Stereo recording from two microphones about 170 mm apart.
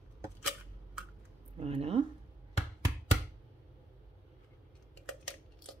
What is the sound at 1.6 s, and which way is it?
Speech, 35° right (ahead or behind).